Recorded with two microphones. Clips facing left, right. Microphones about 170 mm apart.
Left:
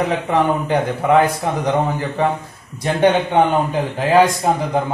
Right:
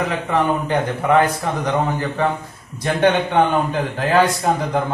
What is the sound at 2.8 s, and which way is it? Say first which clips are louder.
A man's voice: left 2 dB; 10° left (ahead or behind).